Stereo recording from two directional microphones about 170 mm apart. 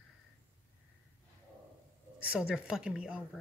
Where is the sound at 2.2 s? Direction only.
5° right (ahead or behind).